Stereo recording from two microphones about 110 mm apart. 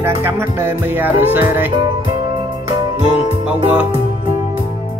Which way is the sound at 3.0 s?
60° left (ahead or behind).